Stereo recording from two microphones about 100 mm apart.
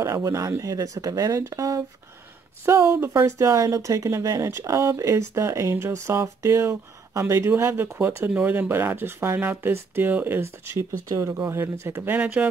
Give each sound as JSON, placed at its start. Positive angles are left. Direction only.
{"t": 0.0, "sound": "speech", "side_deg": -30}